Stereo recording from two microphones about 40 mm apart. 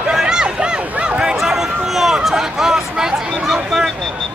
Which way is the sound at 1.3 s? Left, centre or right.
Centre.